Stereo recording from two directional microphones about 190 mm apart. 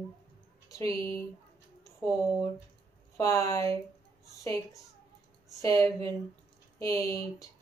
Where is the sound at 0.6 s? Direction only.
15° left (ahead or behind).